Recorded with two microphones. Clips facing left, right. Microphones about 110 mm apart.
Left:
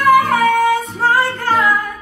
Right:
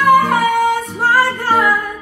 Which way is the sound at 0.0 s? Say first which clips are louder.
Even; 15° right (ahead or behind).